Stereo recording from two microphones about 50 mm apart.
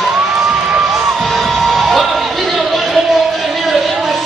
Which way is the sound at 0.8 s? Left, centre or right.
Centre.